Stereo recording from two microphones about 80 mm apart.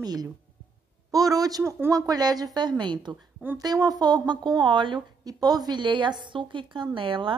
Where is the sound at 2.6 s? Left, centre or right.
Right.